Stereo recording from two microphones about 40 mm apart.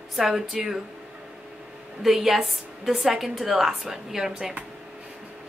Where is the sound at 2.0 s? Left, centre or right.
Centre.